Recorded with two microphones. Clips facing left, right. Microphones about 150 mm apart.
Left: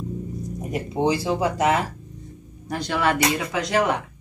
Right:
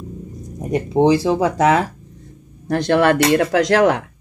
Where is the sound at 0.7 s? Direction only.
90° right.